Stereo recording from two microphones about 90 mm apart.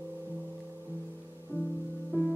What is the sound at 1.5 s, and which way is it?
Music, 20° right (ahead or behind).